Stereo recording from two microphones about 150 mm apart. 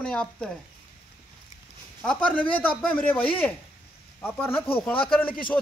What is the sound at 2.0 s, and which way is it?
Speech, 5° left (ahead or behind).